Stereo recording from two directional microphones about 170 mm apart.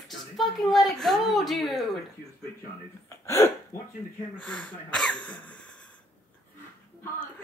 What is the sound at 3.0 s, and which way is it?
Speech, 15° left (ahead or behind).